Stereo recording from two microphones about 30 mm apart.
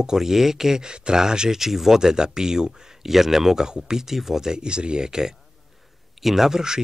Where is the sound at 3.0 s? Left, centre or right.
Centre.